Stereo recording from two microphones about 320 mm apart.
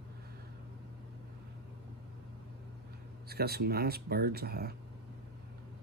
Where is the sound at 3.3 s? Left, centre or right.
Right.